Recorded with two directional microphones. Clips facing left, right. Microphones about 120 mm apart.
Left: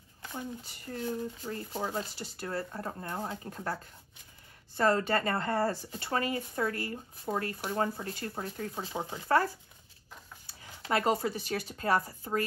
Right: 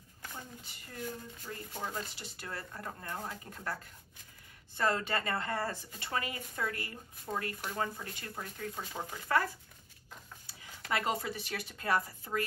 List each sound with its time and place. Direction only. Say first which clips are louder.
0.9 s speech: left 7 dB; 40° left (ahead or behind)
4.7 s speech: left 5 dB; 35° left (ahead or behind)
10.9 s speech: left 5 dB; 35° left (ahead or behind)